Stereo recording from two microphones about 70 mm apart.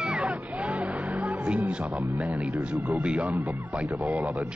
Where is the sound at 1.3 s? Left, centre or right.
Centre.